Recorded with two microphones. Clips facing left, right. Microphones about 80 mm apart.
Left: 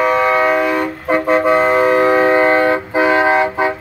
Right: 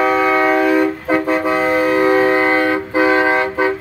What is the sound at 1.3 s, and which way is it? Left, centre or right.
Vehicle, left.